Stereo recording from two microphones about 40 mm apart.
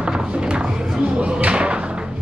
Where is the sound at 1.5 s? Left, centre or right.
Right.